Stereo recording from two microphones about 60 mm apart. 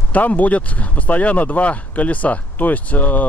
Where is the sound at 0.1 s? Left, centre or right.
Left.